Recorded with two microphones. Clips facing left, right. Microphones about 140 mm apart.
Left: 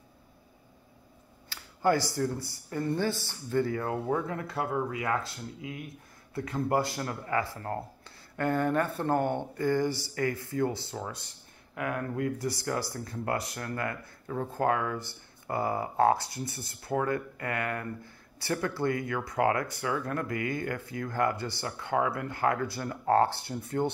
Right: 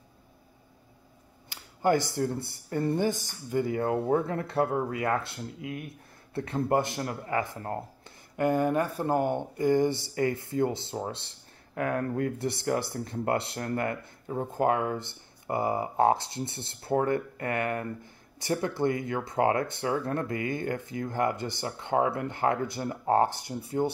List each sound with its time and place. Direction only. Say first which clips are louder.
1.5 s speech: right 1 dB; 20° right (ahead or behind)
3.0 s speech: right 2 dB; 15° right (ahead or behind)
3.8 s speech: right 4 dB; 30° right (ahead or behind)
6.3 s speech: right 2 dB; 25° right (ahead or behind)
8.4 s speech: right 2 dB; 15° right (ahead or behind)